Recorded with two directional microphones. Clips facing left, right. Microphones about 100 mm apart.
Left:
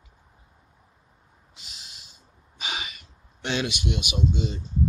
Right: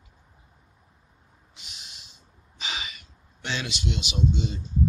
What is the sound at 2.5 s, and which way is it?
Gasp, 50° left (ahead or behind).